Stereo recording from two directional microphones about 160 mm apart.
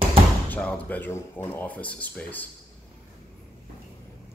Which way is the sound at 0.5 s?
10° left (ahead or behind).